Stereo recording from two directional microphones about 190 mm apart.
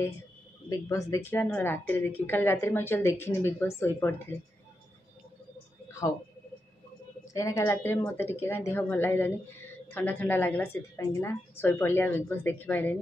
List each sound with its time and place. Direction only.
0.7 s a woman's voice: 15° left (ahead or behind)
6.0 s speech: 25° left (ahead or behind)
7.3 s a woman's voice: 15° left (ahead or behind)